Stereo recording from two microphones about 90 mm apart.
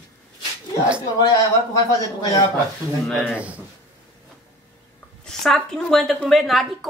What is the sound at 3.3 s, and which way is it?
Speech, 15° right (ahead or behind).